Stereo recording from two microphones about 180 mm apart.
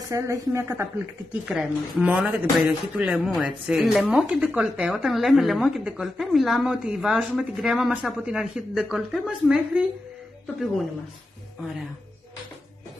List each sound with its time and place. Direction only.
0.1 s a woman's voice: 15° right (ahead or behind)
1.4 s speech: 5° right (ahead or behind)